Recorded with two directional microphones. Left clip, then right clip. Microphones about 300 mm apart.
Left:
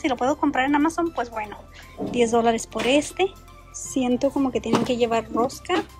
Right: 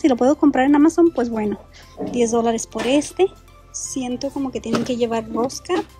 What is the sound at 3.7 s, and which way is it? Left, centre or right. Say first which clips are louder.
Speech: left 2 dB; centre.